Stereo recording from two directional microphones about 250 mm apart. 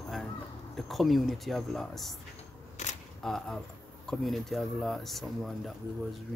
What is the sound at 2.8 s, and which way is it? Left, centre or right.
Speech, left.